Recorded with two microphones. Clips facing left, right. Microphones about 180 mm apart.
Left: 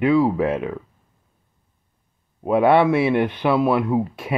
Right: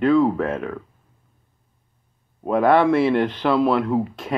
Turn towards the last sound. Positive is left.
turn(degrees=5)  # may be behind; listen again after turning